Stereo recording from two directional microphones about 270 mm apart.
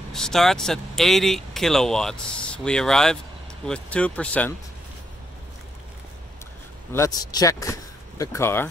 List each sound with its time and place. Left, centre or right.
0.1 s speech: centre
6.9 s speech: centre